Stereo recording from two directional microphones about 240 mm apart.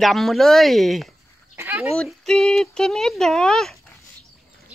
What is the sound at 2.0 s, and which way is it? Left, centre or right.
Speech, centre.